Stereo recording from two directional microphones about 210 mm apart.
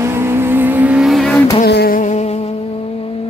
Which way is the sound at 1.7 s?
50° left (ahead or behind).